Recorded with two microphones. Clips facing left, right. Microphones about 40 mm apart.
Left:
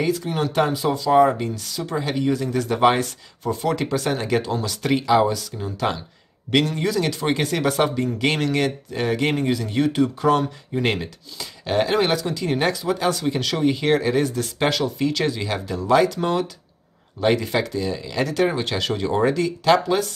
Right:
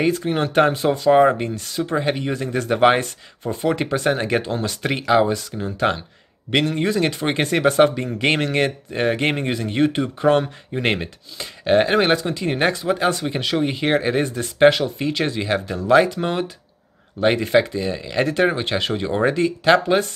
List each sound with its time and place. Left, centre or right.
0.0 s speech: right
13.2 s speech: right